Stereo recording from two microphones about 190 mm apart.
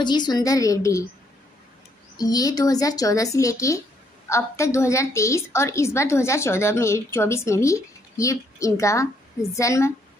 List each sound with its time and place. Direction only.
0.0 s speech: 20° left (ahead or behind)
2.1 s a woman's voice: 20° left (ahead or behind)